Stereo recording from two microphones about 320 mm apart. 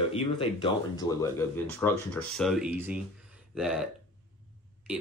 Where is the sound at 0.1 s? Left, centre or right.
Centre.